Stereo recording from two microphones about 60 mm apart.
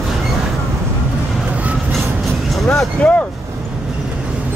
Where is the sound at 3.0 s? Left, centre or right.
Centre.